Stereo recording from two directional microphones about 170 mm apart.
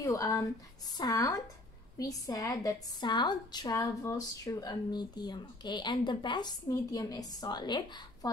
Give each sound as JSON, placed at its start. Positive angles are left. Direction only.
{"t": 0.0, "sound": "a woman's voice", "side_deg": 20}